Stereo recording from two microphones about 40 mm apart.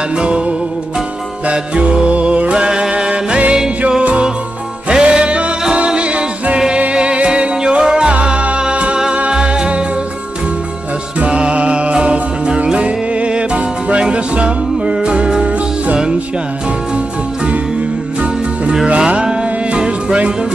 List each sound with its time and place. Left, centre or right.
0.1 s music: right
3.1 s music: right
11.1 s music: right
17.5 s music: right